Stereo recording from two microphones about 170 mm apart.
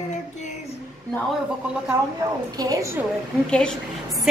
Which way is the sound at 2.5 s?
20° right (ahead or behind).